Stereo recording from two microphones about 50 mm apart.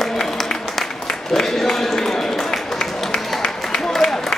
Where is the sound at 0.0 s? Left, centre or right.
Centre.